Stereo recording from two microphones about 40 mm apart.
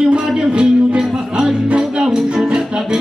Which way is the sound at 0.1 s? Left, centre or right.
Right.